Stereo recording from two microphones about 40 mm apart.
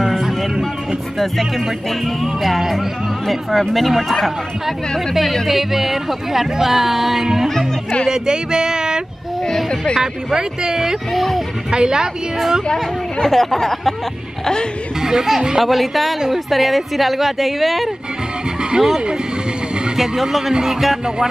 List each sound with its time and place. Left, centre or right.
0.2 s vehicle: centre
1.1 s a woman's voice: centre
5.5 s speech: centre
8.1 s a sound: centre
9.9 s speech: centre
11.1 s a woman's voice: centre
11.7 s a sound: centre
12.7 s speech: centre
14.4 s speech: left
15.0 s speech: centre
15.6 s a woman's voice: centre
18.6 s vehicle: right
20.0 s a woman's voice: centre